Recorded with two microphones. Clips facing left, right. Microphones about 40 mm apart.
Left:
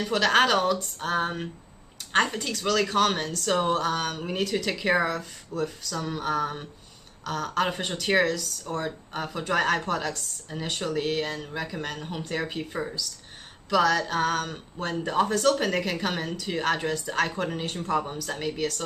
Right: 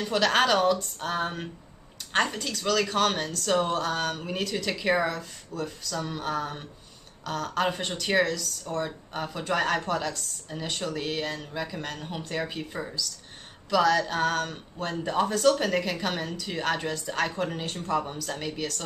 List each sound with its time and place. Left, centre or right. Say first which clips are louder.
0.0 s speech: left 2 dB; centre